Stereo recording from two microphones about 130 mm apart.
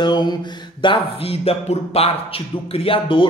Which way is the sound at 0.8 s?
45° left (ahead or behind).